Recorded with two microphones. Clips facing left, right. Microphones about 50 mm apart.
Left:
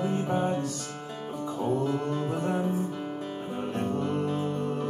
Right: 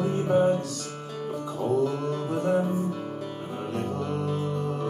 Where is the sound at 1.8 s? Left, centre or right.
Centre.